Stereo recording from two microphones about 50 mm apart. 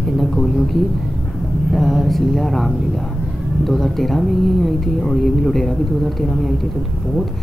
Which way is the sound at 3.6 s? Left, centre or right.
Centre.